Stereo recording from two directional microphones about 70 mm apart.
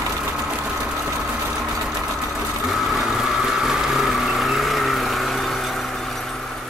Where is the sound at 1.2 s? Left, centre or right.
Right.